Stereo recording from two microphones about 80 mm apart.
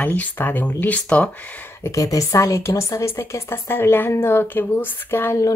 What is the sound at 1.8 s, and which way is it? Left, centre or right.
A woman's voice, left.